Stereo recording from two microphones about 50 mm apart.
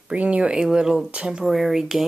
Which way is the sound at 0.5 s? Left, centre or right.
Centre.